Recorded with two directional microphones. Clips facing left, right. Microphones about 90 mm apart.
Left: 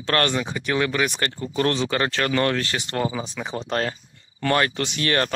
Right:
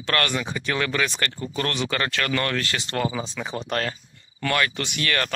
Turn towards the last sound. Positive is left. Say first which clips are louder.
# left 3 dB
turn(degrees=30)  # may be behind; listen again after turning